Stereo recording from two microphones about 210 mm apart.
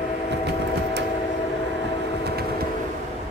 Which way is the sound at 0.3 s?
55° right (ahead or behind).